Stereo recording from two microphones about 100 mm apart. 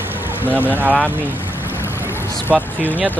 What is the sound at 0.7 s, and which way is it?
Speech, 15° right (ahead or behind).